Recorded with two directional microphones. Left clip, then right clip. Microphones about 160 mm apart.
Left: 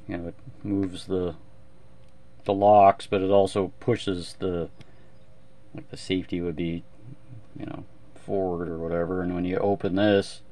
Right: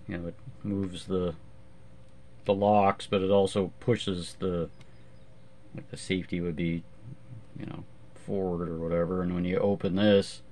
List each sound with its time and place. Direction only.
0.1 s speech: 35° left (ahead or behind)
2.4 s speech: 30° left (ahead or behind)
5.8 s speech: 35° left (ahead or behind)
7.5 s wild animals: 35° left (ahead or behind)
8.3 s speech: 35° left (ahead or behind)